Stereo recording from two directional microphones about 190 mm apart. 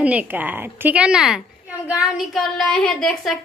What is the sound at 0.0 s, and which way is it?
A woman's voice, 10° right (ahead or behind).